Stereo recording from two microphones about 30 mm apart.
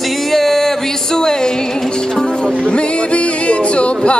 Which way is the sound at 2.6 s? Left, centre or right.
Left.